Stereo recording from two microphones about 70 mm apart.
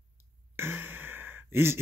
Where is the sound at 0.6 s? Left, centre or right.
Right.